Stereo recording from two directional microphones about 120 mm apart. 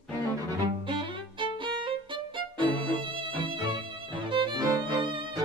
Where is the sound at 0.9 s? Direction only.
45° right (ahead or behind).